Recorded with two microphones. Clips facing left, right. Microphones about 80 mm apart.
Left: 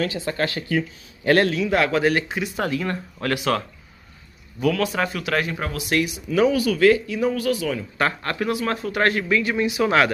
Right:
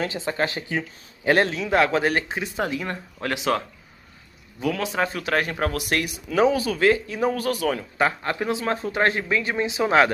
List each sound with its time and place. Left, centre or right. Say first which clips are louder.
0.0 s speech: left 1 dB; right
2.6 s speech: left 2 dB; centre; by 6.2 s right
6.3 s speech: left 1 dB; right
8.0 s speech: even; centre